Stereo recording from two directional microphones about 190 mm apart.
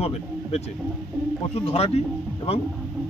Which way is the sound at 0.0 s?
35° left (ahead or behind).